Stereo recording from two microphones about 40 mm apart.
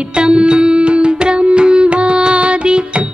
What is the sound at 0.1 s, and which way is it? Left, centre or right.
Music, right.